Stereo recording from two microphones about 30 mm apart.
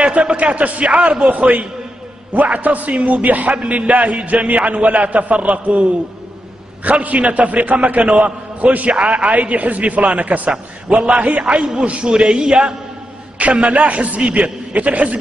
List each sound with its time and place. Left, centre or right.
0.1 s speech: right
0.4 s a man's voice: right
8.9 s a man's voice: right
13.4 s a man's voice: right